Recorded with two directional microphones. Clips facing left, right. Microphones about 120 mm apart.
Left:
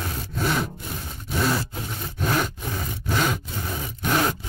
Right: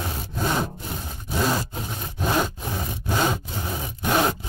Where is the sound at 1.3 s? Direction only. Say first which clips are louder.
Even; 20° right (ahead or behind).